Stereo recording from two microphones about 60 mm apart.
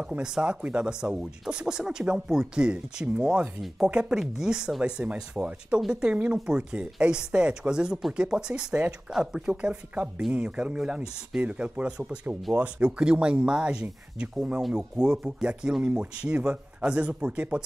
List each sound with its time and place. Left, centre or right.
0.0 s speech: centre